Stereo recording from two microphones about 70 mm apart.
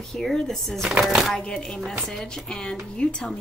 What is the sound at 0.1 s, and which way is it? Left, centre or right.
A woman's voice, centre.